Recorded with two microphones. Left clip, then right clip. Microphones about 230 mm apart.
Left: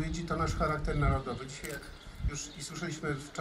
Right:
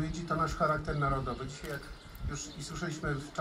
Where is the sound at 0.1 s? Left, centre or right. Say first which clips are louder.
Right 3 dB; left.